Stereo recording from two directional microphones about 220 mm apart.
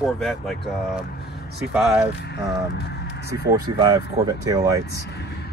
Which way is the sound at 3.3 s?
15° right (ahead or behind).